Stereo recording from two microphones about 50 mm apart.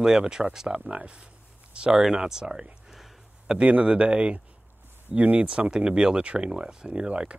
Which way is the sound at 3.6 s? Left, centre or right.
Right.